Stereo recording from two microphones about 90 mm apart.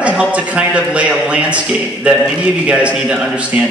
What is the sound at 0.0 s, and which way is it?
A man's voice, 15° right (ahead or behind).